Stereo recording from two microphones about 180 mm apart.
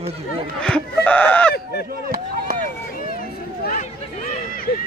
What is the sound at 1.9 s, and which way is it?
Chop, 55° right (ahead or behind).